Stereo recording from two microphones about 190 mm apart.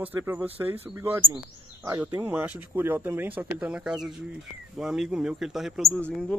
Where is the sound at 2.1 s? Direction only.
10° right (ahead or behind).